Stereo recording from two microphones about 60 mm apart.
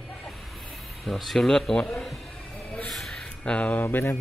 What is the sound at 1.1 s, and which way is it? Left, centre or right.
Speech, centre.